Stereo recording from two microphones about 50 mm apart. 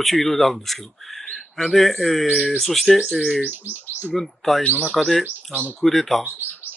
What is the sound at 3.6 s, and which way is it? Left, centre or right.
Speech, right.